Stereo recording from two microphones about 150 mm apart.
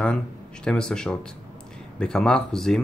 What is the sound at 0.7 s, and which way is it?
Speech, 5° left (ahead or behind).